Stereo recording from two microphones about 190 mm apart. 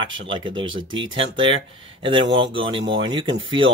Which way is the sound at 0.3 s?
25° right (ahead or behind).